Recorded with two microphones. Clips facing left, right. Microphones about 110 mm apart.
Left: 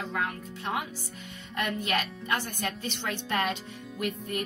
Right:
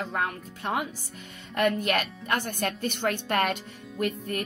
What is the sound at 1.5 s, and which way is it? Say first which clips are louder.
A woman's voice: right 5 dB; 50° right (ahead or behind).